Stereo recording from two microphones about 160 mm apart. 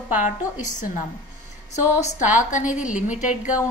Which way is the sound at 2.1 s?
50° left (ahead or behind).